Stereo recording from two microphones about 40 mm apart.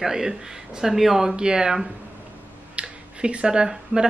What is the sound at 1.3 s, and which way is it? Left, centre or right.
Speech, right.